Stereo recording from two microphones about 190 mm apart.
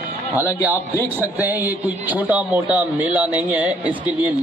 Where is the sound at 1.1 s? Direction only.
10° right (ahead or behind).